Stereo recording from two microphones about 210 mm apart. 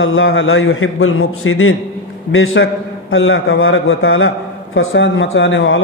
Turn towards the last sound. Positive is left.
turn(degrees=65)  # may be behind; listen again after turning